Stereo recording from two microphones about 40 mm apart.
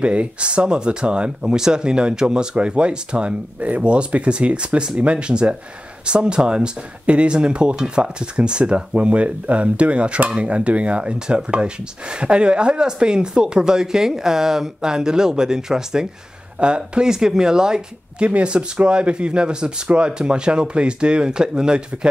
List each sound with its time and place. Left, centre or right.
0.0 s speech: right; by 8.0 s centre
8.0 s speech: right
16.5 s speech: right